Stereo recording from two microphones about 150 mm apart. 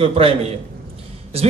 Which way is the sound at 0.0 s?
40° right (ahead or behind).